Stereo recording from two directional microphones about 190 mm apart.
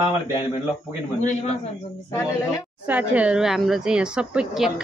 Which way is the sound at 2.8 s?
5° right (ahead or behind).